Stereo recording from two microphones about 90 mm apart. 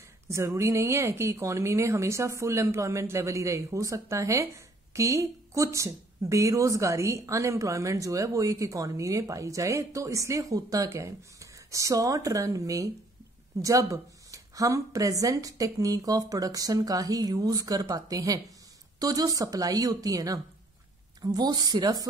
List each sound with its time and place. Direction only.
0.3 s speech: 35° right (ahead or behind)